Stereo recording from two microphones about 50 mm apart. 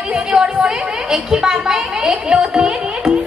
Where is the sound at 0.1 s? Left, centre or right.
Centre.